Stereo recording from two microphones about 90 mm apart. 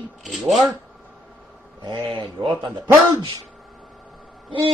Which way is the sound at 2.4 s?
55° right (ahead or behind).